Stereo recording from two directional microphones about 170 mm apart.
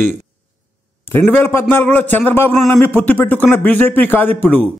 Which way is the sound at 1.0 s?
15° left (ahead or behind).